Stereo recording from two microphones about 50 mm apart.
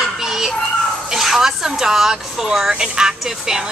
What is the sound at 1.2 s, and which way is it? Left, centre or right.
A woman's voice, centre.